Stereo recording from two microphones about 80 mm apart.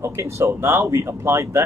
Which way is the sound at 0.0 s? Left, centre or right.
Right.